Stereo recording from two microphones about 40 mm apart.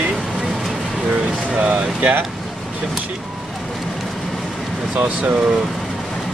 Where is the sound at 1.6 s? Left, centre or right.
Right.